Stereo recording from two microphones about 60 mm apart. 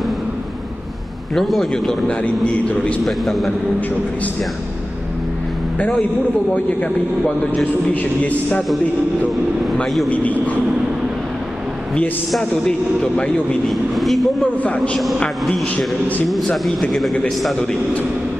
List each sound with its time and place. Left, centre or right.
1.3 s speech: centre
2.2 s a man's voice: left
3.1 s speech: centre
7.9 s a man's voice: left
10.0 s a man's voice: left
12.3 s a man's voice: centre
14.6 s a man's voice: left
15.1 s a man's voice: centre
16.6 s speech: centre